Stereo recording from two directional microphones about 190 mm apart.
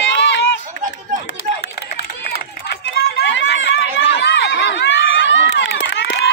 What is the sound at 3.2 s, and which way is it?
Run, 75° left (ahead or behind).